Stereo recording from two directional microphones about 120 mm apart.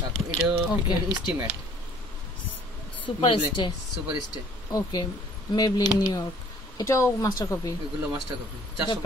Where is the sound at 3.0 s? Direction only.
40° left (ahead or behind).